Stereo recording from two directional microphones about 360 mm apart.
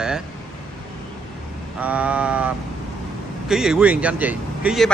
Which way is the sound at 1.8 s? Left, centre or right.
Centre.